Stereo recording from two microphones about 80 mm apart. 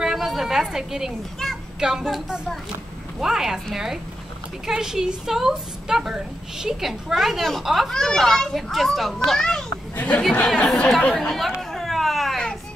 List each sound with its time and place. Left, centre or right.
0.0 s a sound: centre
1.4 s children playing: centre
1.8 s a woman's voice: centre
9.9 s speech: centre
10.9 s chatter: centre